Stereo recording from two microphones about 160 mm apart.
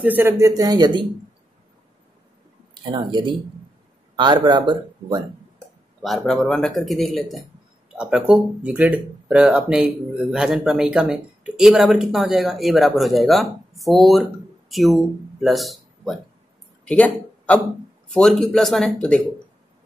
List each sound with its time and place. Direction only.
0.0 s a man's voice: 10° right (ahead or behind)
2.8 s a man's voice: 30° right (ahead or behind)
6.0 s a man's voice: centre (ahead or behind)
16.8 s a sound: 10° left (ahead or behind)
18.1 s speech: centre (ahead or behind)